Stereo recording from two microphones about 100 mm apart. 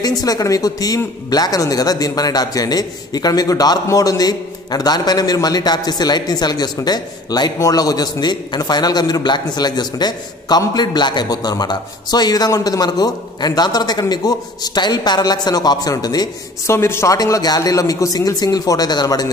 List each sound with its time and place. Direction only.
0.0 s a man's voice: 40° left (ahead or behind)
16.6 s speech: 25° left (ahead or behind)